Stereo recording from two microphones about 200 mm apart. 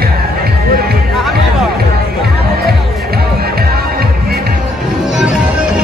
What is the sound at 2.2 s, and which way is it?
Music, 50° right (ahead or behind).